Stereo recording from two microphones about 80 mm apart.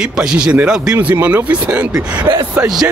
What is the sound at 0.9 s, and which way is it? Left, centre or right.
Speech, right.